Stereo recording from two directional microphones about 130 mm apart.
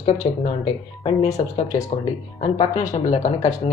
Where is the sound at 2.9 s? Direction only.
65° left (ahead or behind).